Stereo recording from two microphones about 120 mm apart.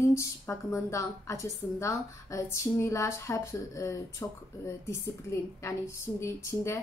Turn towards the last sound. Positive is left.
turn(degrees=25)  # may be behind; listen again after turning